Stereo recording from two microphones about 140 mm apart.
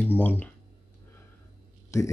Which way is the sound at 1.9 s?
20° left (ahead or behind).